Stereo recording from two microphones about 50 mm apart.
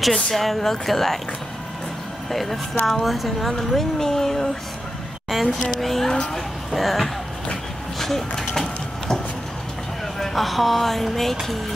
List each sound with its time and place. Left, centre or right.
0.0 s a woman's voice: centre
2.3 s a woman's voice: centre
5.3 s a woman's voice: centre
8.0 s a sound: centre
10.1 s speech: centre